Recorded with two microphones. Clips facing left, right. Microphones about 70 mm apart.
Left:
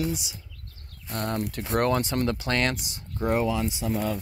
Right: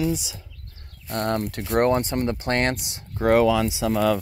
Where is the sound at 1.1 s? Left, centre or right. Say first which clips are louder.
Right 5 dB; right.